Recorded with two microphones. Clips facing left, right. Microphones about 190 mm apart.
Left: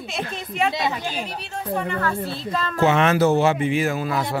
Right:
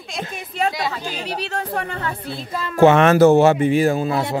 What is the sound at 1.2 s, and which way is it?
Speech, 80° right.